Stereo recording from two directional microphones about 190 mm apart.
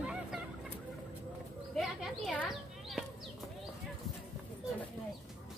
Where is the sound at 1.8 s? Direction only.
Centre (ahead or behind).